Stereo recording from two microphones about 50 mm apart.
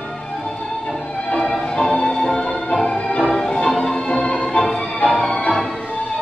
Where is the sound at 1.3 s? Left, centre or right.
Centre.